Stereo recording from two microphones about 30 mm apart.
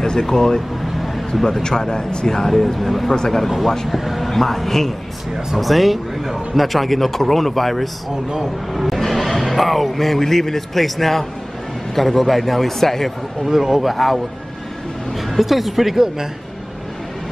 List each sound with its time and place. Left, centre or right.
0.0 s a woman's voice: centre
0.9 s a sound: centre
1.4 s speech: centre
2.5 s a man's voice: centre
3.4 s a man's voice: centre
4.3 s a woman's voice: centre
5.6 s a man's voice: centre
9.0 s a man's voice: centre
13.5 s speech: centre
13.9 s a man's voice: centre